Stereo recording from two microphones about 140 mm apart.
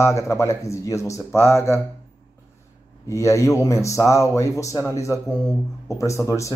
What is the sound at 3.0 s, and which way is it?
Speech, 20° left (ahead or behind).